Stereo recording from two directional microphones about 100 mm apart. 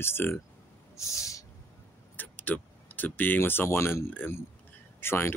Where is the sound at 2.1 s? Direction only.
20° left (ahead or behind).